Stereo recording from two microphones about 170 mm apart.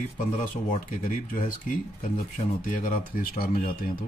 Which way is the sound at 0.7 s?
55° left (ahead or behind).